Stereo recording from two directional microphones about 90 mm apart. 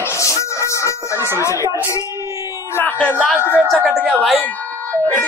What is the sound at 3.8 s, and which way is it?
Speech, centre (ahead or behind).